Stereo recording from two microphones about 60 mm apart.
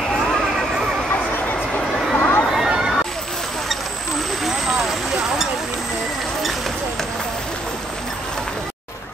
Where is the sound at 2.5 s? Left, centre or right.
Centre.